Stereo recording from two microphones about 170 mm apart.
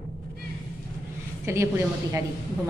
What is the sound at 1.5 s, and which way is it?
Speech, 15° right (ahead or behind).